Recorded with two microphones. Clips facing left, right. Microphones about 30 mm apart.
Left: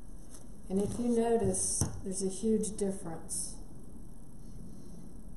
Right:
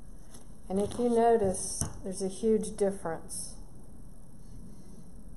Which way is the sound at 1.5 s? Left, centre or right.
Centre.